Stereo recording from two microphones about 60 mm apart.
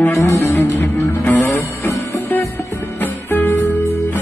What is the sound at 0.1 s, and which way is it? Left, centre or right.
Music, left.